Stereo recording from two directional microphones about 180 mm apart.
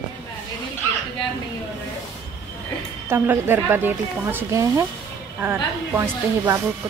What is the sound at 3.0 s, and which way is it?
A woman's voice, 15° right (ahead or behind).